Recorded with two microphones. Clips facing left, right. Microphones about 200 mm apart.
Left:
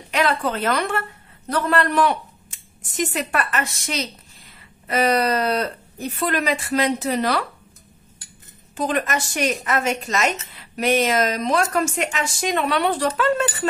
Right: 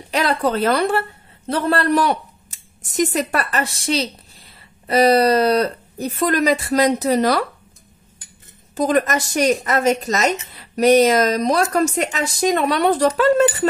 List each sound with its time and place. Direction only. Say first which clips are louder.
0.1 s a man's voice: right 3 dB; 40° right (ahead or behind)
8.7 s speech: right 5 dB; 40° right (ahead or behind)